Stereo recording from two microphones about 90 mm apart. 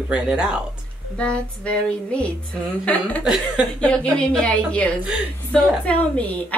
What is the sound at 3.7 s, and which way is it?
Speech, 10° left (ahead or behind).